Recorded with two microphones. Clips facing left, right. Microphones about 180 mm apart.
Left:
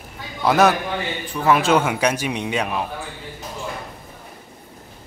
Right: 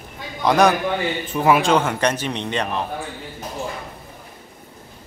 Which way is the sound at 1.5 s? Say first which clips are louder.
Even; 5° left (ahead or behind).